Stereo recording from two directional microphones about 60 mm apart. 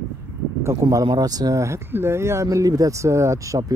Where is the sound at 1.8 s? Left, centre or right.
Right.